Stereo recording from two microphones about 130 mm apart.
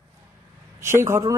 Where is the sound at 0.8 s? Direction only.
20° right (ahead or behind).